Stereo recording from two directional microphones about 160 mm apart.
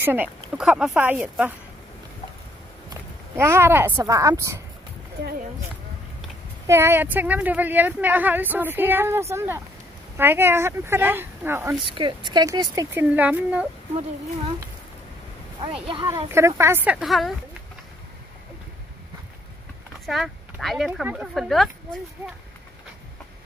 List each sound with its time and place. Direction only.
0.0 s a woman's voice: 10° right (ahead or behind)
2.9 s speech: 15° right (ahead or behind)
6.7 s a woman's voice: 15° right (ahead or behind)
11.9 s speech: 30° right (ahead or behind)
13.1 s a woman's voice: 10° right (ahead or behind)
15.9 s a woman's voice: 25° right (ahead or behind); by 17.3 s centre (ahead or behind)
20.1 s speech: centre (ahead or behind)